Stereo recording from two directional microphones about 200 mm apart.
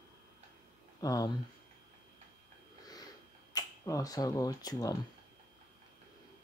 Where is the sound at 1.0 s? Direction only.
15° left (ahead or behind).